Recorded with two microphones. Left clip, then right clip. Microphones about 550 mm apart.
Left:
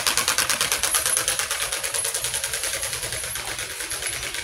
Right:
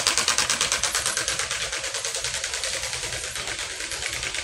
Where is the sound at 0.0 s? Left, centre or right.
Left.